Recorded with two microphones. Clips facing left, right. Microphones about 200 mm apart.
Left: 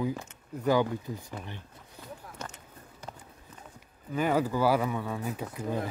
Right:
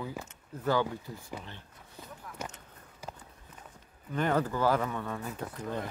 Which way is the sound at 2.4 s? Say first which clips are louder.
Right 2 dB; 10° right (ahead or behind).